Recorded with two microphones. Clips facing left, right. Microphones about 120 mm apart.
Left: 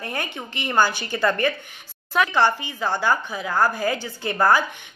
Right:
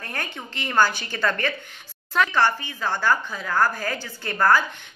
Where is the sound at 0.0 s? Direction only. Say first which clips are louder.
Left 3 dB; 15° left (ahead or behind).